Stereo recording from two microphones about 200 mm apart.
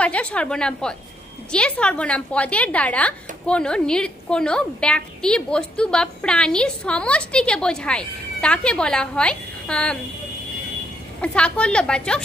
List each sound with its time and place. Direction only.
0.0 s a woman's voice: 5° left (ahead or behind)
11.1 s a woman's voice: 5° left (ahead or behind)